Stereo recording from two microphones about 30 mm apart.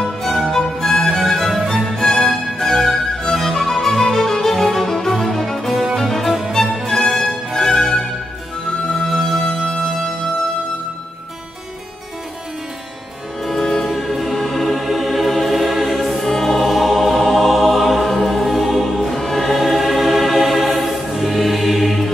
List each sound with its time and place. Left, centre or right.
0.5 s music: centre
7.5 s music: centre
9.0 s music: centre
13.4 s music: centre
14.4 s music: centre
14.7 s music: centre
16.3 s music: centre
16.7 s music: centre